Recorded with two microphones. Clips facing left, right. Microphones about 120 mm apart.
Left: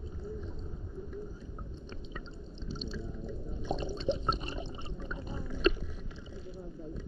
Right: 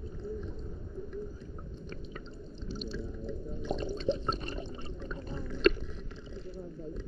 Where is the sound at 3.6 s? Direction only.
20° left (ahead or behind).